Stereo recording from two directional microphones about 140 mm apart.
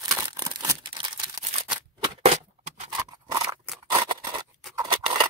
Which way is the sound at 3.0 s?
25° right (ahead or behind).